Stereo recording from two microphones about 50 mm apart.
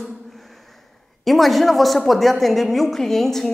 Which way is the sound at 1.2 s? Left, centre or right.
Centre.